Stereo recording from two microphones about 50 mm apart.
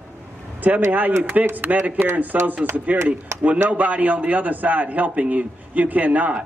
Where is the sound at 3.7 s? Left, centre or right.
Right.